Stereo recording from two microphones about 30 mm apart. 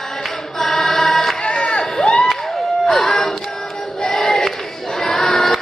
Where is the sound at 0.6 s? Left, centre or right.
Centre.